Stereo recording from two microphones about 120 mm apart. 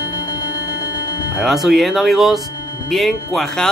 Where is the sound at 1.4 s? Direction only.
Centre (ahead or behind).